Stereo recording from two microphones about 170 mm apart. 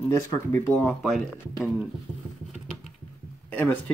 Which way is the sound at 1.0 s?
Centre (ahead or behind).